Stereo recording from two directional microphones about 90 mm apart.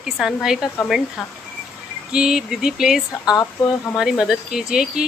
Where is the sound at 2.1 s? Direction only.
5° right (ahead or behind).